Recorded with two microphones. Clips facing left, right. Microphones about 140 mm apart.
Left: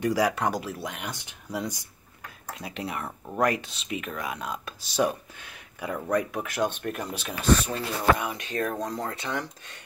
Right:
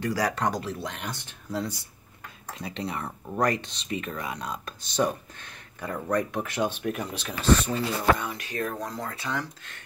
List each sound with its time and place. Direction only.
0.0 s speech: 15° left (ahead or behind)
8.3 s speech: 20° left (ahead or behind)